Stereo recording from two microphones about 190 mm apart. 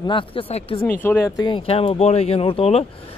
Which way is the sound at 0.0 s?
25° left (ahead or behind).